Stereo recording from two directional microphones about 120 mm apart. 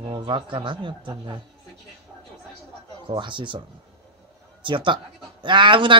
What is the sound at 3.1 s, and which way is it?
Speech, 40° right (ahead or behind).